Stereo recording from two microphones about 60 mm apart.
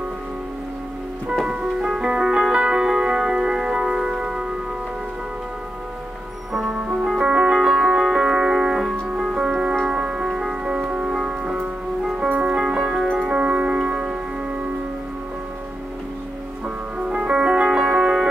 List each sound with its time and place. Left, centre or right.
1.5 s music: centre
6.5 s music: centre
6.8 s music: centre
16.6 s music: centre